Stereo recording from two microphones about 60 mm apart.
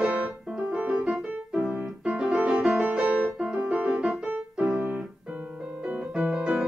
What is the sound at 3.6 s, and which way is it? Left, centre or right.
Music, right.